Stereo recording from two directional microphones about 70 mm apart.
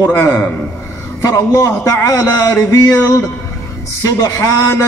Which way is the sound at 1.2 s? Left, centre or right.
Left.